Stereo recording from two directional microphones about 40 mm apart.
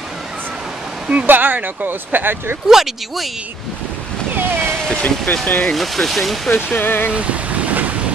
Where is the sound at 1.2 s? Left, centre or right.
Right.